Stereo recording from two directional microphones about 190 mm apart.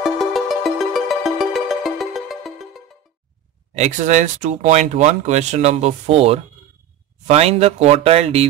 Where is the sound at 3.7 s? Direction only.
40° right (ahead or behind).